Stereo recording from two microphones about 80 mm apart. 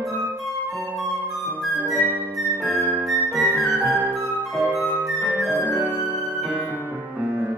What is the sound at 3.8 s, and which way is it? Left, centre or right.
Flute, right.